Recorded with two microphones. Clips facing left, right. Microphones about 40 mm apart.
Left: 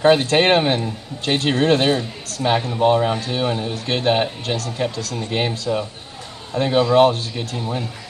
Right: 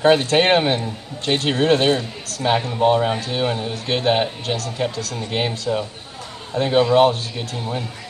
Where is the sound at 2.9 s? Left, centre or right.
Centre.